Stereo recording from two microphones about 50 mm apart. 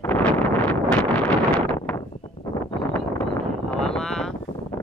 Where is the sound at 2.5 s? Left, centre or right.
Left.